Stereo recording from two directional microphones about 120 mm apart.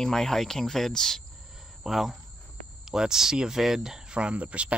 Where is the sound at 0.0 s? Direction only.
5° left (ahead or behind).